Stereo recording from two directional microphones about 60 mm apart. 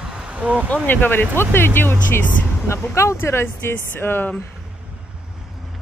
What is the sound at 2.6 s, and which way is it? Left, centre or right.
Speech, left.